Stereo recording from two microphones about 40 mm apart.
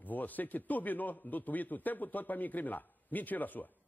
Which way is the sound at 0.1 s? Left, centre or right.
Left.